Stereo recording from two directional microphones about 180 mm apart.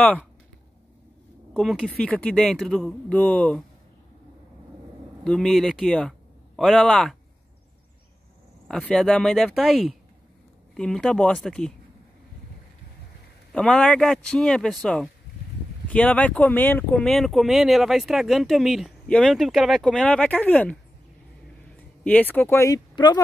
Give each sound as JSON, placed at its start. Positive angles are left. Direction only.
{"t": 1.5, "sound": "speech", "side_deg": 0}
{"t": 5.2, "sound": "speech", "side_deg": 5}
{"t": 8.6, "sound": "speech", "side_deg": 5}
{"t": 13.5, "sound": "speech", "side_deg": 5}
{"t": 22.0, "sound": "speech", "side_deg": 10}